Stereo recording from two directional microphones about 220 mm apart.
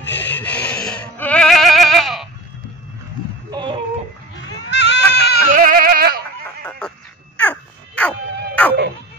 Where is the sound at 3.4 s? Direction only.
20° right (ahead or behind).